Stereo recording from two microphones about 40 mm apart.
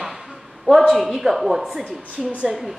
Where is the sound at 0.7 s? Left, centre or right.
Centre.